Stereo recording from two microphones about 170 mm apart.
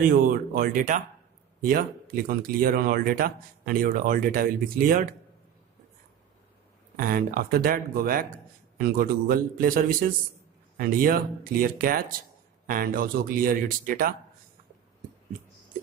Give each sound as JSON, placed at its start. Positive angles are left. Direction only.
{"t": 0.3, "sound": "speech", "side_deg": -55}
{"t": 7.0, "sound": "speech", "side_deg": -55}